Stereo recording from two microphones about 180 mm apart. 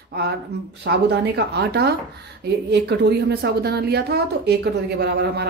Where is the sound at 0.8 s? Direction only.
70° right (ahead or behind).